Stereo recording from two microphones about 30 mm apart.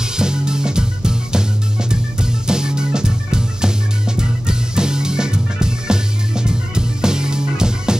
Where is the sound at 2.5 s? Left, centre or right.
Right.